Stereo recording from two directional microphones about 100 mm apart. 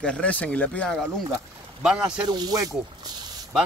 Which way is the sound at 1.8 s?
10° right (ahead or behind).